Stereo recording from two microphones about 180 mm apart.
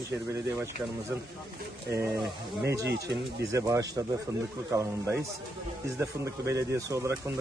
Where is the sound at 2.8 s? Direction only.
70° right (ahead or behind).